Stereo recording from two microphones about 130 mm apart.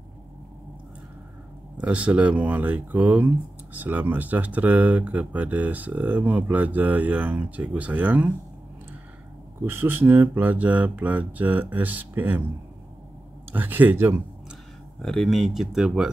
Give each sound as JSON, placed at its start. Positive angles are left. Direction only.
{"t": 1.8, "sound": "speech", "side_deg": -10}
{"t": 9.7, "sound": "speech", "side_deg": -15}
{"t": 13.5, "sound": "speech", "side_deg": -15}
{"t": 15.0, "sound": "speech", "side_deg": 5}